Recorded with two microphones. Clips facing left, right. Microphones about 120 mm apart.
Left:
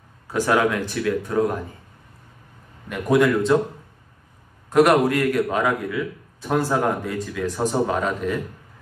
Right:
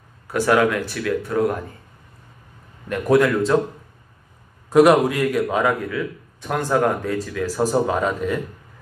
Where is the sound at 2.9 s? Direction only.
5° left (ahead or behind).